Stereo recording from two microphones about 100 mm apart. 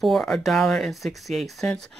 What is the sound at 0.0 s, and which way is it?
Speech, 5° left (ahead or behind).